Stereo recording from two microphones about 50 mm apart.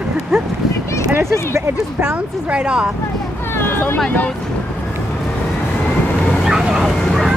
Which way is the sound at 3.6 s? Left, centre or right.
Left.